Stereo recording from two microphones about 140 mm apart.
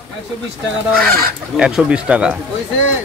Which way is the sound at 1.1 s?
90° right.